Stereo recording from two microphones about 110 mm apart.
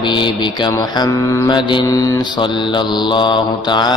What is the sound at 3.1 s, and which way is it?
Mantra, 45° left (ahead or behind).